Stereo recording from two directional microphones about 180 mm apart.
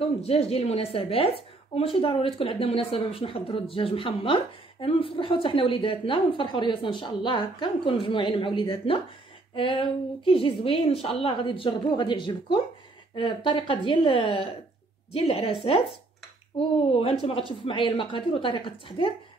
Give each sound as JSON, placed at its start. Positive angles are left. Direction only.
{"t": 0.2, "sound": "speech", "side_deg": 35}